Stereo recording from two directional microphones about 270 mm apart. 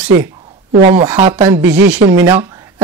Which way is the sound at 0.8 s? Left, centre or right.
Right.